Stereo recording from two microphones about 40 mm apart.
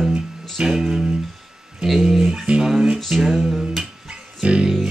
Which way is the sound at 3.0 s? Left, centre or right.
Centre.